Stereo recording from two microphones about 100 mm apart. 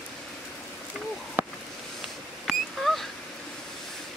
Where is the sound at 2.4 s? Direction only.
Centre (ahead or behind).